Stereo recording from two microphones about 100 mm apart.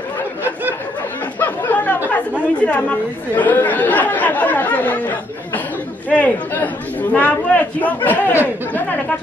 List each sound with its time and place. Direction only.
1.4 s chatter: 20° left (ahead or behind)
2.6 s speech: 15° left (ahead or behind)